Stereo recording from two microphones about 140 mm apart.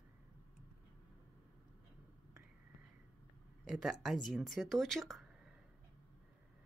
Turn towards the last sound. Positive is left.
turn(degrees=0)  # may be behind; listen again after turning